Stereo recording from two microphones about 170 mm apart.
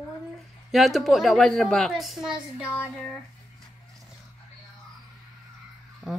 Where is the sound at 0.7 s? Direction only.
Centre (ahead or behind).